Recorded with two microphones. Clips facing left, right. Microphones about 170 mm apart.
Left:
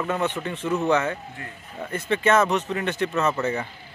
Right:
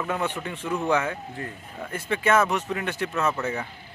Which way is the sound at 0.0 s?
10° right (ahead or behind).